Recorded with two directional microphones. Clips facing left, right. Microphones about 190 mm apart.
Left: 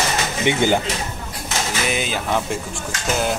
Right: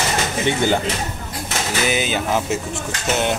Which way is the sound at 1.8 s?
Centre (ahead or behind).